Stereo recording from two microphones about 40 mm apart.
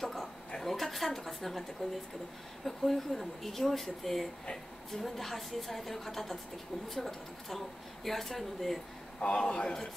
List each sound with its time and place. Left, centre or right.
0.0 s a sound: centre
0.6 s speech: centre
9.2 s a man's voice: left